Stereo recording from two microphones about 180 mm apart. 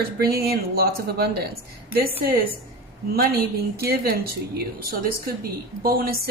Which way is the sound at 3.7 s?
60° right (ahead or behind).